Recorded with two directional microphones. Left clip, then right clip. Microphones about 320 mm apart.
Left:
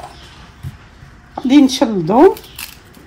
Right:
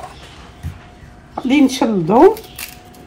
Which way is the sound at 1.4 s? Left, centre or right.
Left.